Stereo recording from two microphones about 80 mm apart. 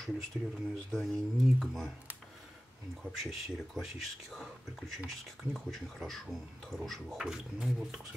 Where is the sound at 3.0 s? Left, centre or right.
Centre.